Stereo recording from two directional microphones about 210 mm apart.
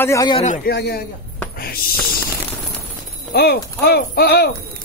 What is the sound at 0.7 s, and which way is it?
Speech, 50° left (ahead or behind).